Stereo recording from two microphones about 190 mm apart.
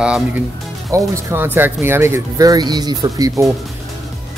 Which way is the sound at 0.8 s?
15° right (ahead or behind).